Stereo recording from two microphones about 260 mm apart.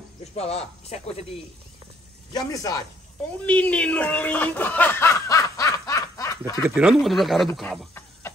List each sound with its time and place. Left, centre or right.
0.2 s speech: left
2.3 s speech: centre
6.6 s speech: centre